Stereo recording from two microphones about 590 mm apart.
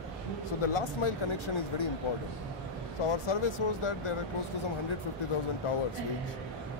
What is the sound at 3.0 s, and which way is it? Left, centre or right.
Speech, left.